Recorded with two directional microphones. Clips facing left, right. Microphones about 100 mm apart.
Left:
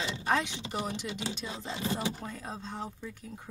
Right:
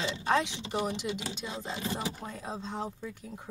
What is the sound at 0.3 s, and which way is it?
Speech, 20° right (ahead or behind).